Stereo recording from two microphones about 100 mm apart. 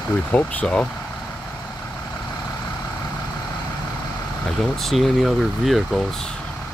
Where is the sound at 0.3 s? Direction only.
15° left (ahead or behind).